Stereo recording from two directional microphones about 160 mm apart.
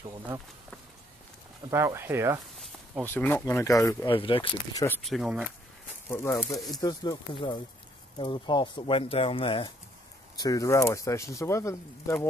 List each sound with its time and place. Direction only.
1.7 s speech: 15° right (ahead or behind)
3.1 s speech: 10° left (ahead or behind)
4.1 s speech: 35° left (ahead or behind)
5.0 s speech: centre (ahead or behind)
6.0 s speech: 15° left (ahead or behind); by 9.7 s 35° left (ahead or behind)
10.3 s speech: 25° left (ahead or behind)